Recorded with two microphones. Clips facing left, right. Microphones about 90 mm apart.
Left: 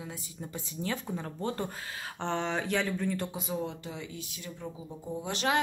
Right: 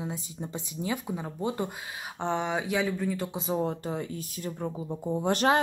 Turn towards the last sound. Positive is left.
turn(degrees=-40)  # may be behind; listen again after turning